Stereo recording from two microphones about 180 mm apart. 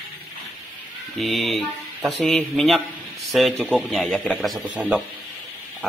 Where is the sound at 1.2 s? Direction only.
Centre (ahead or behind).